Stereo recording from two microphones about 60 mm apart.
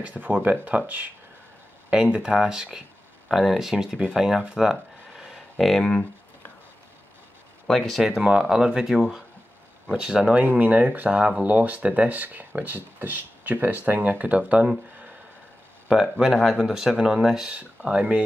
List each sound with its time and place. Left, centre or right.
0.0 s speech: right
1.9 s speech: centre
4.4 s a sound: centre
7.6 s speech: centre; by 14.7 s right
15.9 s speech: centre
17.5 s speech: centre